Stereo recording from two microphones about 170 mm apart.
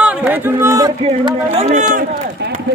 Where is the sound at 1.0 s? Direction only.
35° right (ahead or behind).